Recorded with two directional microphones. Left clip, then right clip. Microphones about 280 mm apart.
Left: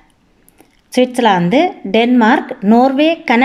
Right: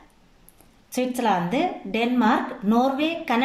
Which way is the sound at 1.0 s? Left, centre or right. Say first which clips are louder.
Left 11 dB; left.